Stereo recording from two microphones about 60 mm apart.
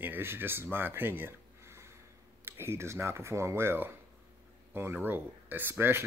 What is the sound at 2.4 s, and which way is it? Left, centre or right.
Speech, right.